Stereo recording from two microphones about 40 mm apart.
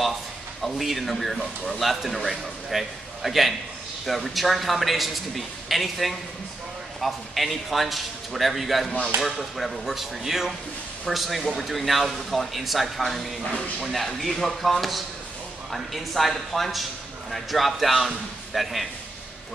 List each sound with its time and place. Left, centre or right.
0.6 s speech: centre
13.4 s speech: left
13.8 s speech: centre